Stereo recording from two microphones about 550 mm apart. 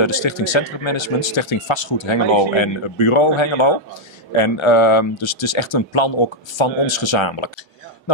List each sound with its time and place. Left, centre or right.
0.0 s a man's voice: left